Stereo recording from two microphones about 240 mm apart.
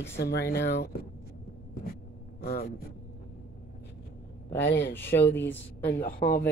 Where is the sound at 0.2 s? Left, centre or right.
Left.